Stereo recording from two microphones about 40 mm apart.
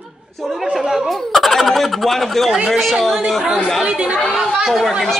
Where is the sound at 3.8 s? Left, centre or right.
Right.